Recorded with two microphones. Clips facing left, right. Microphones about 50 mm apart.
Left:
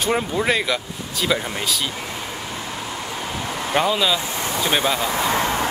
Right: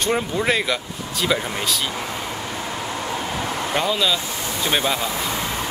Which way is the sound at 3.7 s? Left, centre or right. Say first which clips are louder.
Left 3 dB; centre.